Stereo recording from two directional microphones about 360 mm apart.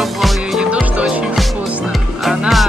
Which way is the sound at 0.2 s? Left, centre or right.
Centre.